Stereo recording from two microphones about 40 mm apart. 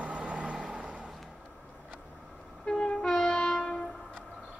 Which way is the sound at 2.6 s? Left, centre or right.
Centre.